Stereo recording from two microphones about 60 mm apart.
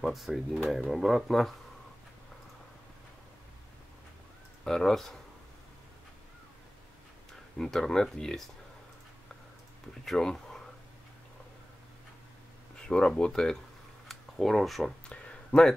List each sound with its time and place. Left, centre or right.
0.0 s speech: centre
4.6 s speech: centre
7.5 s speech: centre
10.0 s speech: centre
12.8 s speech: centre
14.0 s a sound: centre
15.0 s a sound: centre